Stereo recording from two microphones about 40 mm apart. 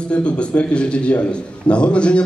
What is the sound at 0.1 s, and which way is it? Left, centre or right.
A man's voice, left.